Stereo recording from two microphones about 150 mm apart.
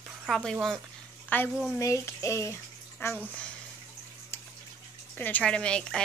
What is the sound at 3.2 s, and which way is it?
Speech, 10° left (ahead or behind).